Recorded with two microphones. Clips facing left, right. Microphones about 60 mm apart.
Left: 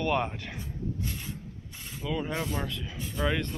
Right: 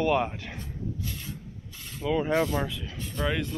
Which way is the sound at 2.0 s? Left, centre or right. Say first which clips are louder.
Right 7 dB; centre.